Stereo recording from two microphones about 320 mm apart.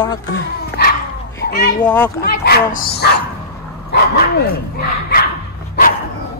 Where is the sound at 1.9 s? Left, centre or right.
Centre.